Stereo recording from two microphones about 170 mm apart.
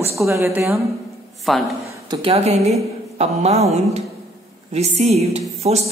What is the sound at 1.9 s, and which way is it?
A woman's voice, 30° right (ahead or behind).